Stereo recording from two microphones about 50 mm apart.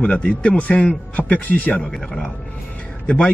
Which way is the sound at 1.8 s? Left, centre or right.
Centre.